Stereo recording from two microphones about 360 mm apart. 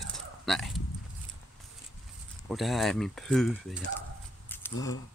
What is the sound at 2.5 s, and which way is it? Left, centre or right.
Speech, centre.